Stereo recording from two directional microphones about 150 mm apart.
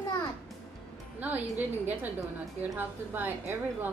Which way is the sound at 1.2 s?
10° right (ahead or behind).